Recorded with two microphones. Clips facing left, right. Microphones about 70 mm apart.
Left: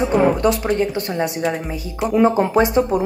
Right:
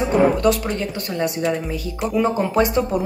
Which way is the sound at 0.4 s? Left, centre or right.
Centre.